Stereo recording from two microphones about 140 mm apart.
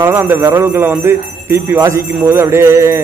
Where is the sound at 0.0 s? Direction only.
15° right (ahead or behind).